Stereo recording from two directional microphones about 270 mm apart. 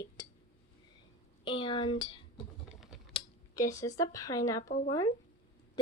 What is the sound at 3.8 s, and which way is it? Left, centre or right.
Speech, centre.